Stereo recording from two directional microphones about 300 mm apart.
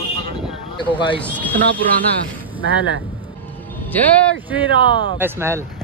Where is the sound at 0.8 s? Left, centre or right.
Centre.